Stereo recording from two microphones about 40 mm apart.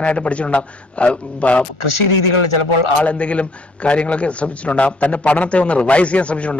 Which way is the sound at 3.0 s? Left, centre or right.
Left.